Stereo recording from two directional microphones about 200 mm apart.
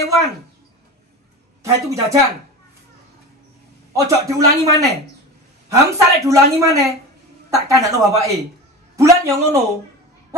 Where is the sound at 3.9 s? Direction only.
15° right (ahead or behind).